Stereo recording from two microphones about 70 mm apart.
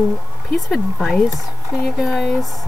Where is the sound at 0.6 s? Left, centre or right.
Centre.